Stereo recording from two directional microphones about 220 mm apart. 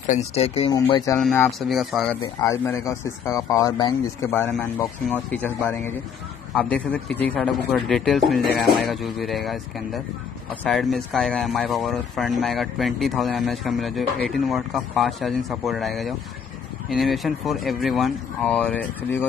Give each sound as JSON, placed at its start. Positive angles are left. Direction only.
{"t": 0.0, "sound": "speech", "side_deg": 30}
{"t": 1.2, "sound": "speech", "side_deg": 5}
{"t": 2.2, "sound": "speech", "side_deg": 15}